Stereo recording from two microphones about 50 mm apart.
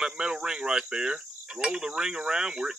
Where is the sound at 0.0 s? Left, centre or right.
Centre.